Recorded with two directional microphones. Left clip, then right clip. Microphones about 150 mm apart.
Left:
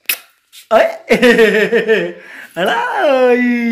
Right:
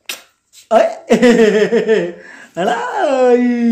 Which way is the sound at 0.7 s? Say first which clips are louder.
Left 1 dB; 5° left (ahead or behind).